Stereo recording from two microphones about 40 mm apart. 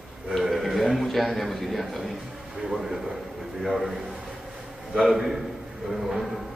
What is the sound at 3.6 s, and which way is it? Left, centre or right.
Speech, centre.